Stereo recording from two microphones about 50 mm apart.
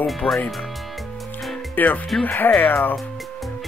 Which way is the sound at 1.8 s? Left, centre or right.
Left.